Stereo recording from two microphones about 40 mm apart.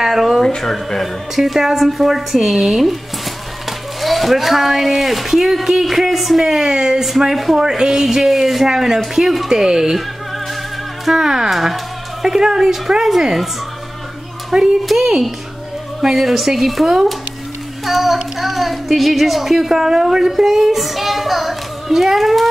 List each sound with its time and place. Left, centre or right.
0.0 s a sound: centre
0.6 s speech: centre
1.3 s a child's voice: centre
4.0 s a child's voice: centre
7.6 s a child's voice: centre
9.5 s speech: centre
11.1 s speech: centre
14.5 s speech: centre
14.9 s a child's voice: centre